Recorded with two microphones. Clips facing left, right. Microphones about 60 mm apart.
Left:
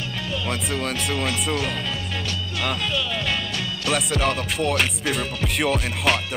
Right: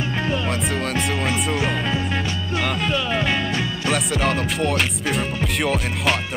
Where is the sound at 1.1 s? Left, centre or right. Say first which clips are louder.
Right 2 dB; centre.